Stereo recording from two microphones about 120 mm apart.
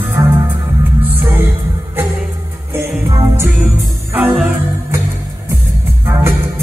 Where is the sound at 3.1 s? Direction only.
20° right (ahead or behind).